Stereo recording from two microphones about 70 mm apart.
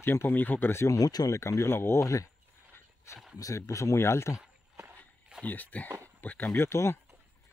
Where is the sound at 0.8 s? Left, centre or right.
Left.